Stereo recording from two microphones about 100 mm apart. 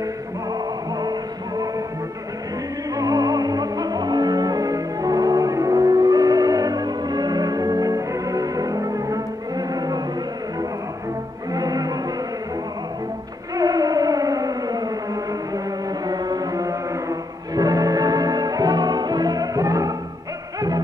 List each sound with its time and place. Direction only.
3.0 s music: 40° right (ahead or behind)
11.5 s music: 40° right (ahead or behind)
13.6 s theremin: 40° right (ahead or behind)
16.1 s music: 40° right (ahead or behind)